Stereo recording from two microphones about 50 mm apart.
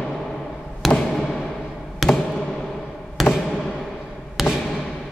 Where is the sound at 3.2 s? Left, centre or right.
Centre.